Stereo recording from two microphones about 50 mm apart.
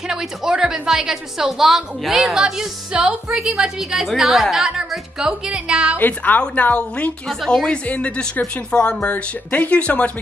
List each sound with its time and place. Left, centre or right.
0.1 s a woman's voice: centre
5.9 s a woman's voice: left
6.4 s speech: left
7.2 s speech: centre
7.7 s speech: left
9.1 s speech: left